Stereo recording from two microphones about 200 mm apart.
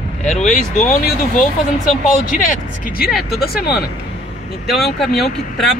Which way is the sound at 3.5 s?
50° left (ahead or behind).